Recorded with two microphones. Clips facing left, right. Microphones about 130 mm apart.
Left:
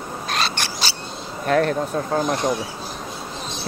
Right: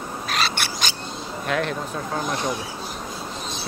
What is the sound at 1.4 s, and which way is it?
Speech, 40° left (ahead or behind).